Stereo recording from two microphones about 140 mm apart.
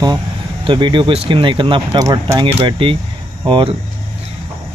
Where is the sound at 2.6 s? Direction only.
40° right (ahead or behind).